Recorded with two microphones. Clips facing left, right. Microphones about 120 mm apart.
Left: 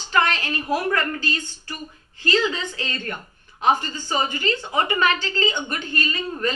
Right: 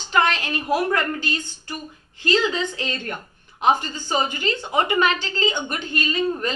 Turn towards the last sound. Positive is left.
turn(degrees=-15)  # may be behind; listen again after turning